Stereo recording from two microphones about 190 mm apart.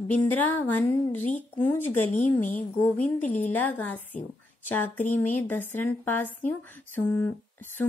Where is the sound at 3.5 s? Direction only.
10° left (ahead or behind).